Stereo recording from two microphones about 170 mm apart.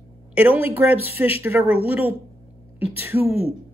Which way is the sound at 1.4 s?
15° right (ahead or behind).